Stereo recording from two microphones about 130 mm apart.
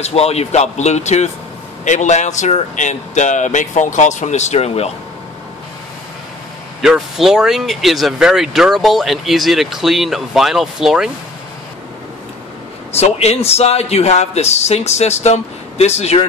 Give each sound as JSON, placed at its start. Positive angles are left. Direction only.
{"t": 0.0, "sound": "a man's voice", "side_deg": 50}
{"t": 6.8, "sound": "speech", "side_deg": -5}
{"t": 12.9, "sound": "a man's voice", "side_deg": 55}